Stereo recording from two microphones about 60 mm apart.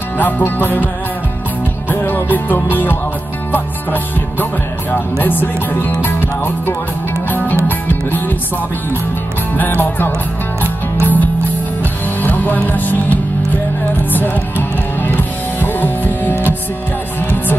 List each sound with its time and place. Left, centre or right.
0.2 s music: left
1.9 s music: left
9.6 s music: left